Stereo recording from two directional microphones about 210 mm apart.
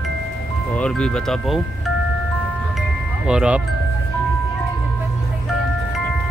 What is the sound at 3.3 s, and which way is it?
Speech, 5° right (ahead or behind).